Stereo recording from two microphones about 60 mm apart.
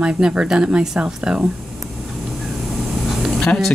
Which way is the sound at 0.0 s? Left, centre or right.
Centre.